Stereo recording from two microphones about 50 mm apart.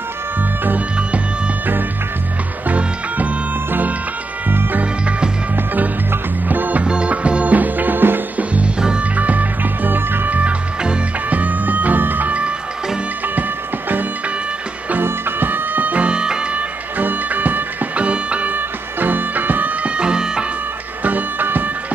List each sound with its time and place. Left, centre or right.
4.5 s music: right
6.5 s music: right
6.8 s music: right
9.1 s music: right
13.4 s music: right
15.0 s music: right
17.0 s music: right
20.0 s music: centre
21.0 s music: right